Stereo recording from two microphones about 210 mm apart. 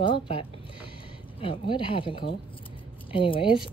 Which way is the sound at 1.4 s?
25° left (ahead or behind).